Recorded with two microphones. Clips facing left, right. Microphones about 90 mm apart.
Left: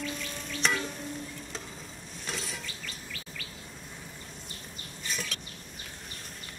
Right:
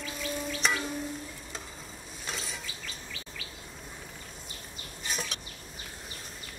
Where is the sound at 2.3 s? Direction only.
Centre (ahead or behind).